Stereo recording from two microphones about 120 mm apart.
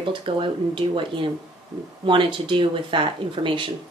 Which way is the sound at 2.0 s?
45° right (ahead or behind).